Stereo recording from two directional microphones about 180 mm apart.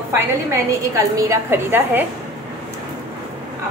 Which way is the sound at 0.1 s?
15° right (ahead or behind).